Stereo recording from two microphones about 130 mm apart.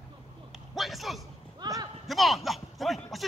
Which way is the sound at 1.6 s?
30° right (ahead or behind).